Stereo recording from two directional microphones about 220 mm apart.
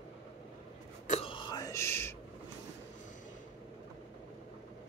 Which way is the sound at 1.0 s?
30° left (ahead or behind).